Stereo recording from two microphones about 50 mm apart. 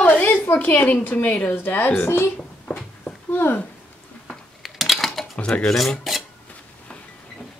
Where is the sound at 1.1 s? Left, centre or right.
Left.